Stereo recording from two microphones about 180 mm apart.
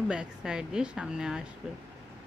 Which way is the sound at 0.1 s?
5° right (ahead or behind).